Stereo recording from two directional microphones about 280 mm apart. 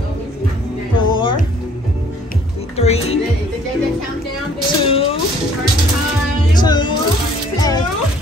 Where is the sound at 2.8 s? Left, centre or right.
Left.